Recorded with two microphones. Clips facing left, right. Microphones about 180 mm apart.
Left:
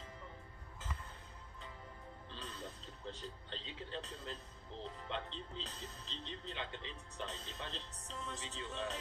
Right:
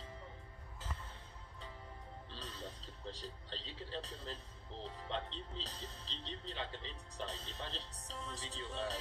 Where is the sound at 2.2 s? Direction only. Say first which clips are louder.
Left 1 dB; 35° right (ahead or behind).